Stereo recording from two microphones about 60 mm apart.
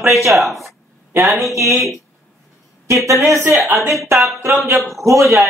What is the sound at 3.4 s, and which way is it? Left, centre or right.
Speech, right.